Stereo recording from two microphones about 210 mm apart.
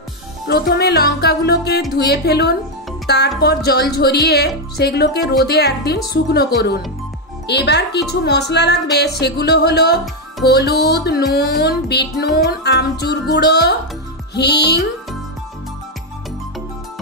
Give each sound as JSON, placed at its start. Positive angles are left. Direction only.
{"t": 0.5, "sound": "music", "side_deg": 50}